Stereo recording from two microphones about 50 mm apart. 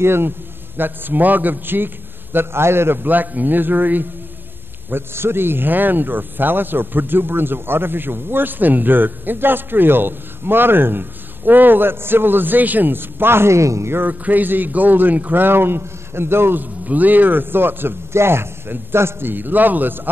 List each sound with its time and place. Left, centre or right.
0.0 s a man's voice: right
0.7 s speech: right
2.3 s a man's voice: right
3.0 s speech: right
5.1 s a man's voice: right
14.2 s speech: right
15.4 s a man's voice: right
16.8 s speech: right
18.1 s a man's voice: right